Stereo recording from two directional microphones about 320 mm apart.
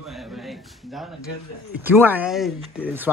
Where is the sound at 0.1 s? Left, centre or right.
Centre.